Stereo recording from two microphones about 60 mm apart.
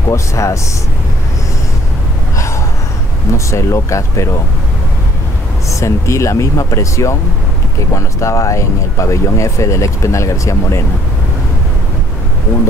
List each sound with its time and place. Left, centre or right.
0.1 s speech: left
3.3 s speech: left
5.7 s speech: left